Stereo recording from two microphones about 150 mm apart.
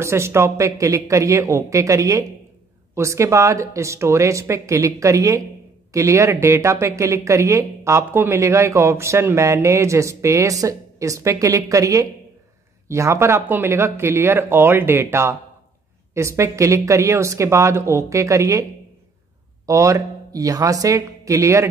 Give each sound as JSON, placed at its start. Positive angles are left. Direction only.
{"t": 0.0, "sound": "a woman's voice", "side_deg": -15}